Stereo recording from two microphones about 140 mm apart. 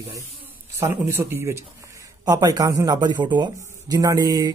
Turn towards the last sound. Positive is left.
turn(degrees=-30)  # may be behind; listen again after turning